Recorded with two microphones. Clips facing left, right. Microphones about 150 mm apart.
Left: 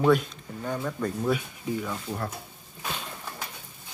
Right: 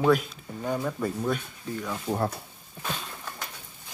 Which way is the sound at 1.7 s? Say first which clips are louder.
Left 4 dB; 10° left (ahead or behind).